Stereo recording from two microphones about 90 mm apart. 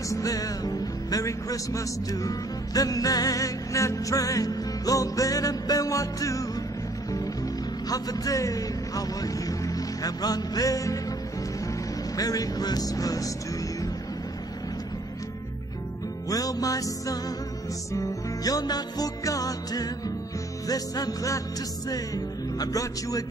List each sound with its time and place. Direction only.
0.1 s speech: 40° left (ahead or behind)
7.9 s speech: 40° left (ahead or behind)
12.2 s music: 40° left (ahead or behind)
16.3 s speech: 40° left (ahead or behind)
17.9 s music: 45° left (ahead or behind)